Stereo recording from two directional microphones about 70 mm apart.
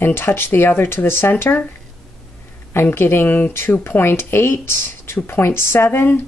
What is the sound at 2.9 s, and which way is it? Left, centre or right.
Speech, left.